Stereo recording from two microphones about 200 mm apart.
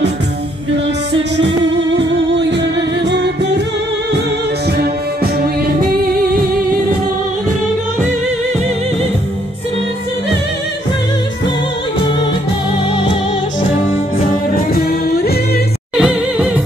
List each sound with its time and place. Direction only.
2.0 s music: 60° right (ahead or behind)
4.7 s music: 50° right (ahead or behind)
14.1 s music: 45° left (ahead or behind)
16.0 s music: 5° right (ahead or behind)